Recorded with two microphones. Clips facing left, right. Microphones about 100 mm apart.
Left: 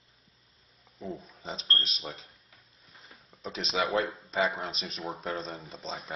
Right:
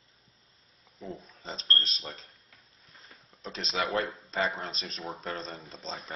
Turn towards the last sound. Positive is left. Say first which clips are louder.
# left 1 dB
turn(degrees=5)  # may be behind; listen again after turning